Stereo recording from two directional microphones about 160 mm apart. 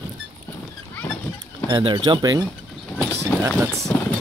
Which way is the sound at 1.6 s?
25° right (ahead or behind).